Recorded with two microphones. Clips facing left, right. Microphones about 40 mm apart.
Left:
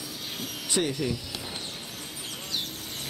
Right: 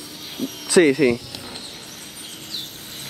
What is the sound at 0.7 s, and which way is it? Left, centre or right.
Speech, right.